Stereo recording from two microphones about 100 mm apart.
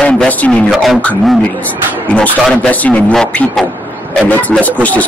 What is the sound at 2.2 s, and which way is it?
A man's voice, 10° left (ahead or behind).